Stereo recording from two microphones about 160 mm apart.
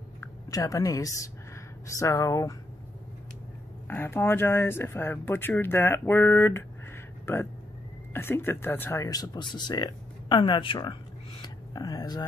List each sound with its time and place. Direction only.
0.2 s a woman's voice: 20° left (ahead or behind)
3.8 s speech: 15° left (ahead or behind); by 11.0 s 30° left (ahead or behind)
11.4 s a sound: 25° left (ahead or behind)